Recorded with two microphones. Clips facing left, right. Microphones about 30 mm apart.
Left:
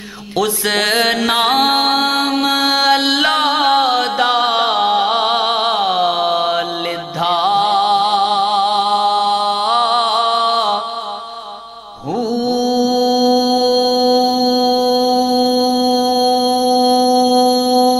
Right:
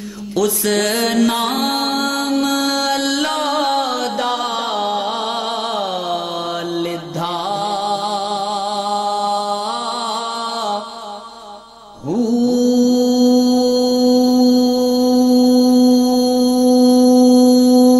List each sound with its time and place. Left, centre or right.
0.4 s music: left
12.1 s mantra: left